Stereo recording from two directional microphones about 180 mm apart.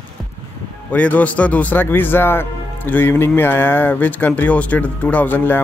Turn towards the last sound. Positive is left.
turn(degrees=10)  # may be behind; listen again after turning